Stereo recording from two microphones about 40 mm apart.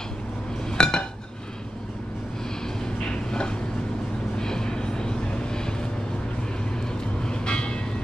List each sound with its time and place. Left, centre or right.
0.7 s chink: centre
3.1 s a sound: left
4.4 s vehicle: centre
7.2 s vehicle: left